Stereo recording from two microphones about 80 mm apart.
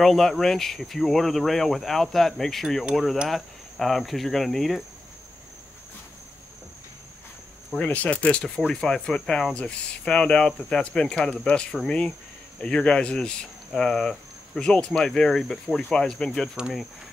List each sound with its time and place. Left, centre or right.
0.0 s speech: centre
2.8 s speech: centre
7.8 s speech: centre